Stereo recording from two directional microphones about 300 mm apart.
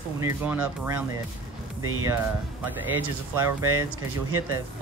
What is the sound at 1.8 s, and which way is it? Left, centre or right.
Speech, right.